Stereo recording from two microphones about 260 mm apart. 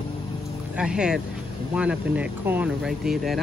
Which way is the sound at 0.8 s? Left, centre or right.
Centre.